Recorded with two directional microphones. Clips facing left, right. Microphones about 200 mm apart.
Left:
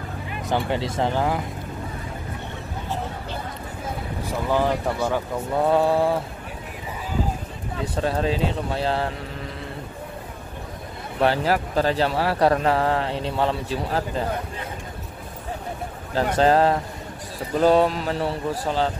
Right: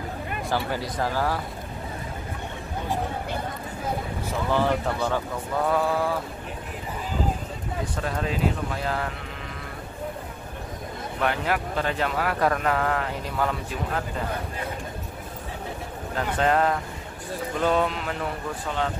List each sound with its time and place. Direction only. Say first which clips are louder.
0.5 s speech: left 4 dB; 25° left (ahead or behind)
4.2 s speech: left 3 dB; 15° left (ahead or behind)
5.6 s speech: left 5 dB; 25° left (ahead or behind)
7.9 s speech: left 7 dB; 30° left (ahead or behind)
11.1 s a man's voice: left 5 dB; 35° left (ahead or behind)
16.2 s a man's voice: left 5 dB; 30° left (ahead or behind)